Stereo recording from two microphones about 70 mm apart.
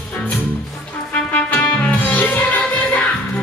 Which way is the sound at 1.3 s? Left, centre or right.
Left.